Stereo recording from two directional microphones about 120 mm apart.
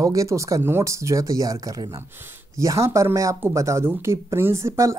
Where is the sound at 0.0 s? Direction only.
25° right (ahead or behind).